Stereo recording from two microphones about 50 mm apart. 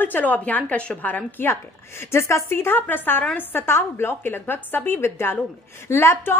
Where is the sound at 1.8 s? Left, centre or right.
Left.